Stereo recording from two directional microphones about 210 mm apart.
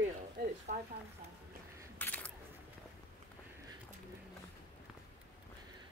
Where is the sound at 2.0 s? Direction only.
5° left (ahead or behind).